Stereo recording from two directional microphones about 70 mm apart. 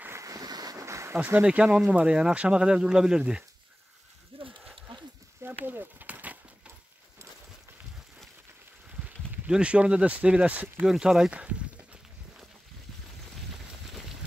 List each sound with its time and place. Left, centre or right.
0.2 s vehicle: right
0.8 s a sound: right
1.4 s speech: centre
5.4 s a sound: right
9.5 s speech: centre
10.9 s walk: centre